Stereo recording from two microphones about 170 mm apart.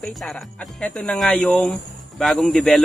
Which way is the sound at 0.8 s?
5° left (ahead or behind).